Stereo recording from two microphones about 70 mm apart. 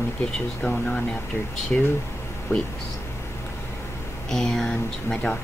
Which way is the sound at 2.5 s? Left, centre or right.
Left.